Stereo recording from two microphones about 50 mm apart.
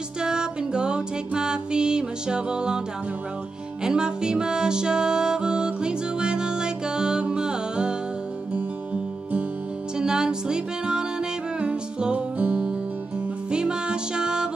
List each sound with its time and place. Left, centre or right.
0.2 s music: centre
3.8 s music: centre
9.9 s music: centre